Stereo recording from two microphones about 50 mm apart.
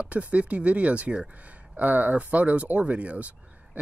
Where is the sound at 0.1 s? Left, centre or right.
Right.